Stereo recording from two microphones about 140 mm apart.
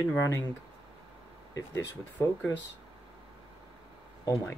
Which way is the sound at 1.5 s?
20° left (ahead or behind).